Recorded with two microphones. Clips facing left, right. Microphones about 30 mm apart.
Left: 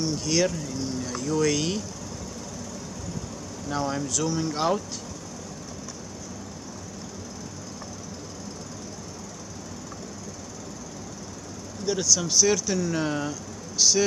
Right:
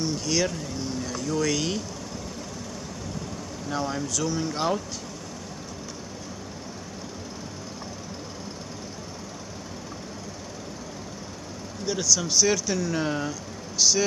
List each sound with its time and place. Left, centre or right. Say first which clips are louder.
0.0 s speech: left 1 dB; centre
0.5 s speech: left 1 dB; right
1.0 s speech: left 2 dB; centre
3.7 s speech: left 1 dB; centre
11.8 s speech: even; centre